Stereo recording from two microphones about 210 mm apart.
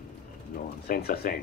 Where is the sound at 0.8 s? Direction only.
45° left (ahead or behind).